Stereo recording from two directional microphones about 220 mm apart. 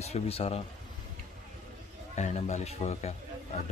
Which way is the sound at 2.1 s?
30° left (ahead or behind).